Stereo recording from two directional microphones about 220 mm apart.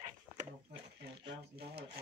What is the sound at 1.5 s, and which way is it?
Speech, 45° right (ahead or behind).